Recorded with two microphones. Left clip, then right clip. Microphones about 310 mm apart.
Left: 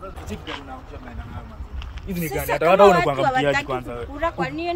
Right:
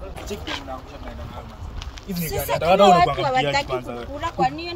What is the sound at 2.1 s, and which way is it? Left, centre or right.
Speech, centre.